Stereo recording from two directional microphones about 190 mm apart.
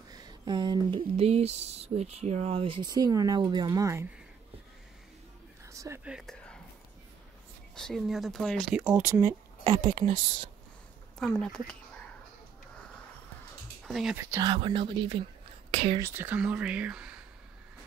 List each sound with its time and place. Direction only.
0.1 s speech: 20° right (ahead or behind)
5.7 s whispering: 15° right (ahead or behind)
6.0 s whispering: centre (ahead or behind)
7.7 s speech: centre (ahead or behind)
9.7 s speech: 25° right (ahead or behind)
11.1 s speech: centre (ahead or behind)
13.8 s speech: centre (ahead or behind)
14.4 s speech: 25° right (ahead or behind)
16.0 s speech: 10° right (ahead or behind)